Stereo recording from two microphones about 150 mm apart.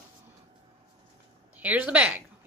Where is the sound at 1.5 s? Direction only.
10° right (ahead or behind).